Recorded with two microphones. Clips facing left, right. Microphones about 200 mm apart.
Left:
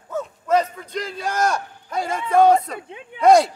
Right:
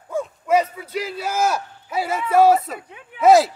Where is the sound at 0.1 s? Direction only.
10° right (ahead or behind).